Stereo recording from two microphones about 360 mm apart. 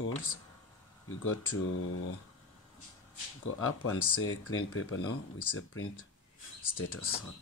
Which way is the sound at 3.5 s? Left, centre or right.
Left.